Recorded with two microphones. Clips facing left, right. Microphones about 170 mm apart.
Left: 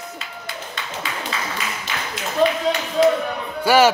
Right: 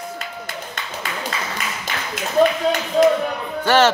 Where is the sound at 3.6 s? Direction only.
10° left (ahead or behind).